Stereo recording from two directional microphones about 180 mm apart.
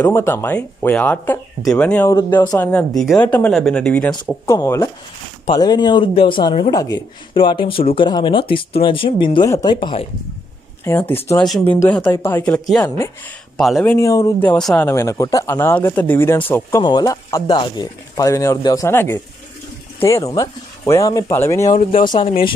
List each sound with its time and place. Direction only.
0.0 s speech: 10° left (ahead or behind)
4.5 s speech: 15° left (ahead or behind)
11.1 s speech: 10° left (ahead or behind)
13.9 s speech: 20° left (ahead or behind)
14.9 s speech: 20° left (ahead or behind)
16.8 s speech: 20° left (ahead or behind)
21.6 s speech: 35° left (ahead or behind)